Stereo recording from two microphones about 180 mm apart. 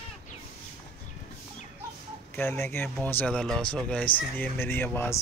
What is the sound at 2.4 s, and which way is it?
Speech, 10° left (ahead or behind).